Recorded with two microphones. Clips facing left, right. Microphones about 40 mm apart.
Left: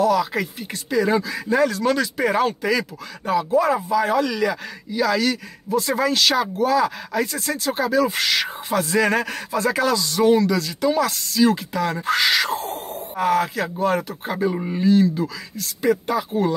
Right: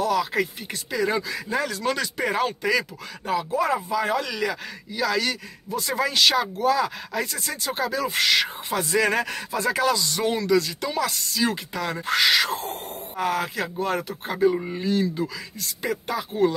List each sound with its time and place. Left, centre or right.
0.0 s speech: centre